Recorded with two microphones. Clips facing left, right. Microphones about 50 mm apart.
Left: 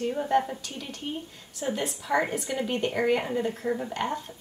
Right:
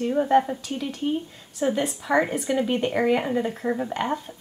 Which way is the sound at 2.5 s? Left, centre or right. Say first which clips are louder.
Right 5 dB; centre.